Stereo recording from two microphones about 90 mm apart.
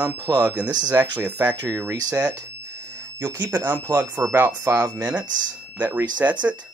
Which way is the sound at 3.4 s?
20° right (ahead or behind).